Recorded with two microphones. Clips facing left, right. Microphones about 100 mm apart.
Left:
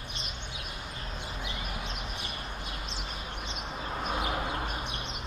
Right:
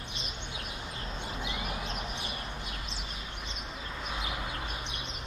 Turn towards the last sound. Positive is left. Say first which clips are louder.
# left 5 dB
turn(degrees=45)  # may be behind; listen again after turning